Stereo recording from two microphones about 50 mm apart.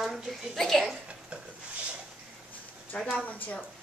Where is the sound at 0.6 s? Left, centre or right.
Centre.